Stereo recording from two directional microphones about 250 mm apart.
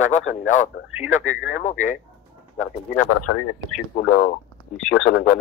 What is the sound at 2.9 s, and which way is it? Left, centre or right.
Speech, left.